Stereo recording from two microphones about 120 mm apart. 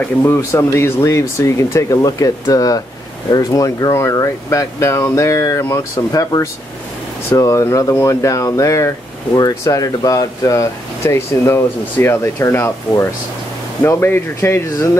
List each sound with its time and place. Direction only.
0.2 s speech: 20° left (ahead or behind)